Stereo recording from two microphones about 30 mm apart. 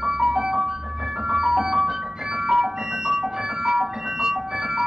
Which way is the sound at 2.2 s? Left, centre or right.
Centre.